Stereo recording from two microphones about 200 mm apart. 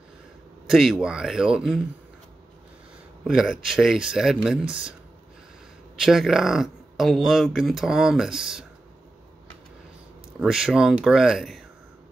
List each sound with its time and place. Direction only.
0.7 s speech: centre (ahead or behind)
3.3 s speech: 5° right (ahead or behind)
5.9 s speech: centre (ahead or behind)
10.4 s speech: centre (ahead or behind)